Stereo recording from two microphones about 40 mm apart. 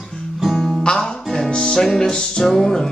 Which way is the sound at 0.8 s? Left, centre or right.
Centre.